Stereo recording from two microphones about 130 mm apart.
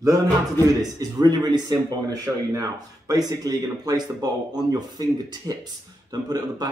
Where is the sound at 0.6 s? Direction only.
30° right (ahead or behind).